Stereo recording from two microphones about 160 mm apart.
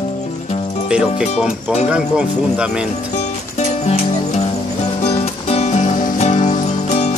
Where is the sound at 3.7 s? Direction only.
45° left (ahead or behind).